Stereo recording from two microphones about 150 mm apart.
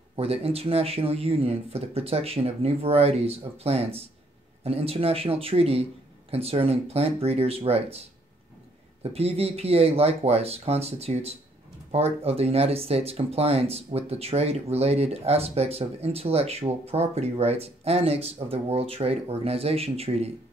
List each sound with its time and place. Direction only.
0.1 s speech: 40° right (ahead or behind)
9.0 s speech: 45° right (ahead or behind)